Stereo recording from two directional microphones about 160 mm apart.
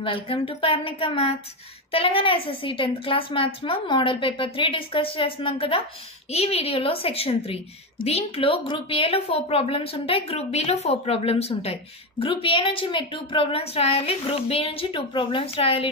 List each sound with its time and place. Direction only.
0.0 s a woman's voice: 35° left (ahead or behind)